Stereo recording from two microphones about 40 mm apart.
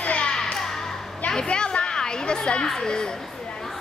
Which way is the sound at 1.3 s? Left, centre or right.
Centre.